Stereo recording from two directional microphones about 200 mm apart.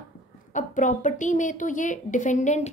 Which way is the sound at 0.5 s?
40° left (ahead or behind).